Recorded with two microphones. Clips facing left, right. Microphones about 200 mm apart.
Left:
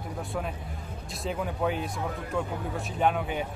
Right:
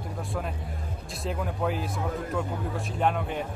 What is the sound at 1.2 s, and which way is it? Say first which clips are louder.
Speech: even; centre (ahead or behind).